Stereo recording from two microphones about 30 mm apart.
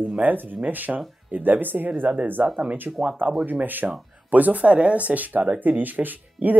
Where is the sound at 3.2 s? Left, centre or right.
Right.